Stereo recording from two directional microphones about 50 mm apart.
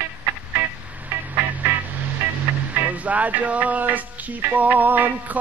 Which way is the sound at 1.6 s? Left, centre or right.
Right.